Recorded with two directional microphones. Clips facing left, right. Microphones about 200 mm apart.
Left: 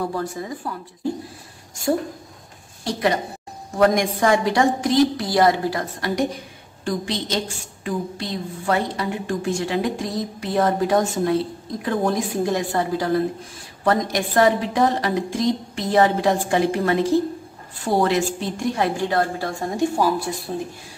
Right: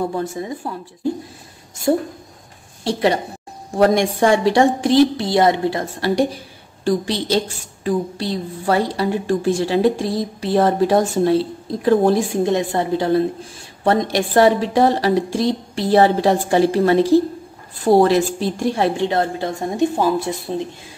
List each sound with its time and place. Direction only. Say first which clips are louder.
0.0 s a woman's voice: right 3 dB; 25° right (ahead or behind)
2.8 s a woman's voice: right 4 dB; 30° right (ahead or behind)